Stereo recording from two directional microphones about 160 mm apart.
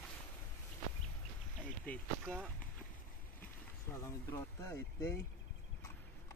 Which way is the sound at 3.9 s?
20° left (ahead or behind).